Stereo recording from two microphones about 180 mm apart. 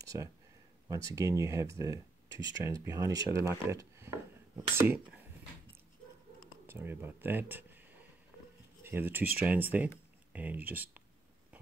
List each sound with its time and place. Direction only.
0.0 s a sound: 20° right (ahead or behind)
0.8 s speech: 20° right (ahead or behind)
6.7 s speech: 10° right (ahead or behind)
8.8 s speech: 10° right (ahead or behind)